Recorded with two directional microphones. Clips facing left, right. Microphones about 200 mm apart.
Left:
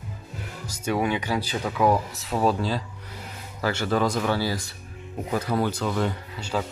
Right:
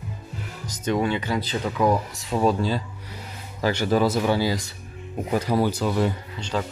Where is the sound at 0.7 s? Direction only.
10° left (ahead or behind).